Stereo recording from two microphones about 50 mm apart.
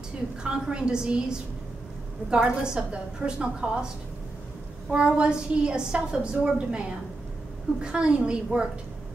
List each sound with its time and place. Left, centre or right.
0.4 s a woman's voice: centre
2.3 s a woman's voice: centre
4.9 s a woman's voice: right
7.8 s a woman's voice: centre